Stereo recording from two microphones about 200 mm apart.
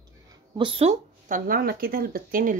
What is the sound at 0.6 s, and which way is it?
Speech, 30° right (ahead or behind).